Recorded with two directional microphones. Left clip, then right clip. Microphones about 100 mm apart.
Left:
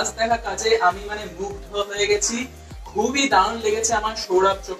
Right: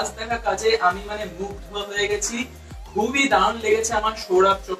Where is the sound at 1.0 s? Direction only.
30° left (ahead or behind).